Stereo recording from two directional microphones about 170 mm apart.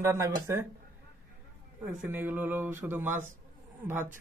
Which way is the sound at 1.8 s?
10° right (ahead or behind).